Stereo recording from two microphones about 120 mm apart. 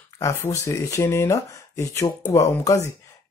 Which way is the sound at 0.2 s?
25° left (ahead or behind).